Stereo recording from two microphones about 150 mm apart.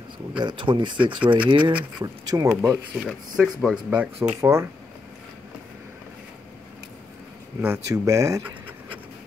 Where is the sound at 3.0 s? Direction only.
Centre (ahead or behind).